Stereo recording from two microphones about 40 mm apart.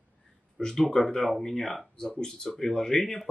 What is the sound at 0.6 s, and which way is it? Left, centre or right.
Speech, centre.